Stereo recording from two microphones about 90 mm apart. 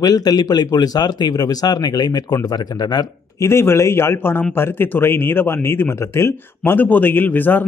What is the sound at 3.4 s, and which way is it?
Speech, 30° left (ahead or behind).